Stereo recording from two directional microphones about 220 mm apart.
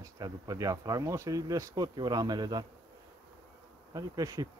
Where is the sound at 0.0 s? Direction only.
15° right (ahead or behind).